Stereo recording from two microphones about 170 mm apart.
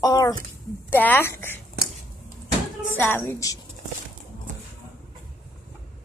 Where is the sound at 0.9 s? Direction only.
10° left (ahead or behind).